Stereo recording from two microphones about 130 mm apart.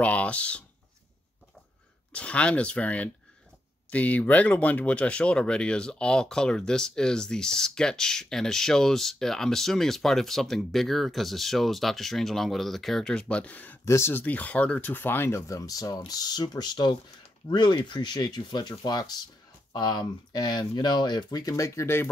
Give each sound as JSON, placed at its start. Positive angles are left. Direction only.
{"t": 0.0, "sound": "speech", "side_deg": 10}
{"t": 2.1, "sound": "speech", "side_deg": 10}